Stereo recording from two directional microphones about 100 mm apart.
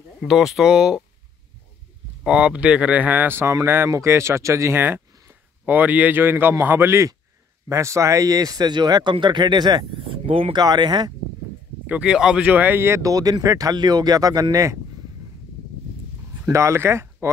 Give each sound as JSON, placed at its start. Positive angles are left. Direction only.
{"t": 0.2, "sound": "speech", "side_deg": -5}
{"t": 2.2, "sound": "speech", "side_deg": -10}
{"t": 9.9, "sound": "speech", "side_deg": -65}
{"t": 10.5, "sound": "speech", "side_deg": -45}
{"t": 11.8, "sound": "speech", "side_deg": -10}
{"t": 16.4, "sound": "speech", "side_deg": -30}